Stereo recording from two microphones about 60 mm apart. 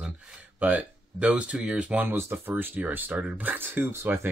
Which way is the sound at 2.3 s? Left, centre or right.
Right.